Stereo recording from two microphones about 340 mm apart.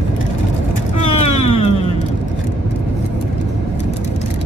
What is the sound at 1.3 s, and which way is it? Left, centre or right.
Music, centre.